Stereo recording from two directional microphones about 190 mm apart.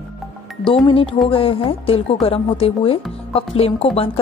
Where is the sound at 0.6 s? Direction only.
30° left (ahead or behind).